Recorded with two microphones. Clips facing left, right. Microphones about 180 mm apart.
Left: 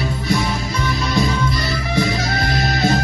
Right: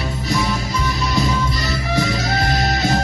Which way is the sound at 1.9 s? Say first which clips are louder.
Even; 55° left (ahead or behind).